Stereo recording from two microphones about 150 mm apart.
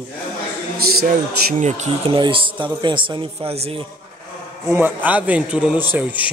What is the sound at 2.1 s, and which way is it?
A man's voice, 35° right (ahead or behind).